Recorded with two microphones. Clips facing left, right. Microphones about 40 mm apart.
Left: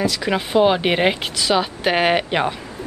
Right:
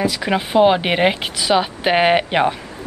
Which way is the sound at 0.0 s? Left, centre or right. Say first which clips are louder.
Right 1 dB; centre.